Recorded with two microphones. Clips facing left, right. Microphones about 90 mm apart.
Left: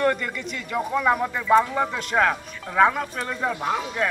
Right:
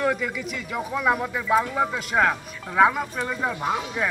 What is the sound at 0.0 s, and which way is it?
Speech, 5° right (ahead or behind).